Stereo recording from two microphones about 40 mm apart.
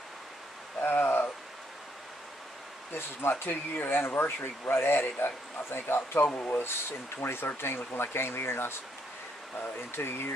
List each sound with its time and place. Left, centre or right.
0.7 s a sound: left
2.9 s speech: left
5.9 s speech: left
6.6 s speech: left
9.9 s speech: left